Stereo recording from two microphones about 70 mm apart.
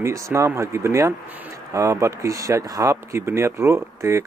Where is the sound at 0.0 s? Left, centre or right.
Right.